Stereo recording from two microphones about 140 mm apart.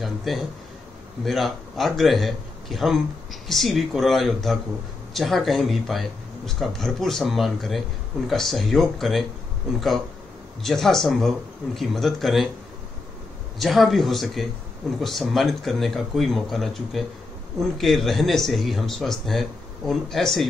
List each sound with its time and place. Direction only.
0.0 s speech: centre (ahead or behind)
10.6 s speech: centre (ahead or behind)
13.6 s speech: centre (ahead or behind)